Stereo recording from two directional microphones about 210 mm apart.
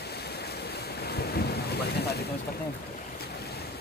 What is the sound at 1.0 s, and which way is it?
Boat, 50° left (ahead or behind).